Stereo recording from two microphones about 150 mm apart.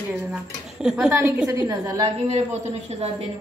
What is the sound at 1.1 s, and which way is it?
Speech, 20° right (ahead or behind).